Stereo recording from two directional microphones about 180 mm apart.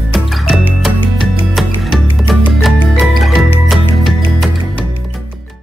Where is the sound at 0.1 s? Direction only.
Centre (ahead or behind).